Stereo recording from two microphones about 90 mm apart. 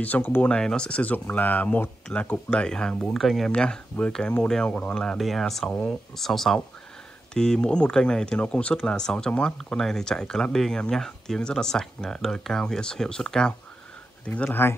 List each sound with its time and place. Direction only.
0.0 s speech: 20° left (ahead or behind)
0.5 s speech: 10° left (ahead or behind)
4.9 s speech: centre (ahead or behind); by 14.8 s 25° left (ahead or behind)